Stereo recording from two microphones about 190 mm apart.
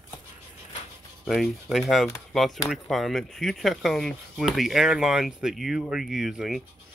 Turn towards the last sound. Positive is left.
turn(degrees=0)  # may be behind; listen again after turning